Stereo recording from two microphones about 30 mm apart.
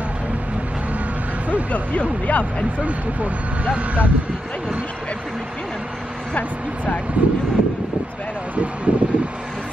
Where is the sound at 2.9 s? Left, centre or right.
Right.